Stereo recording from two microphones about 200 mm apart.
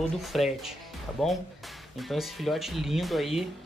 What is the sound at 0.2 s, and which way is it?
Speech, centre (ahead or behind).